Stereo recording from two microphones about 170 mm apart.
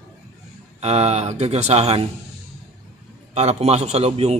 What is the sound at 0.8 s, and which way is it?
Speech, 40° right (ahead or behind).